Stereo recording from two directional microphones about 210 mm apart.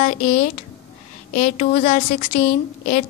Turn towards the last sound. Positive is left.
turn(degrees=35)  # may be behind; listen again after turning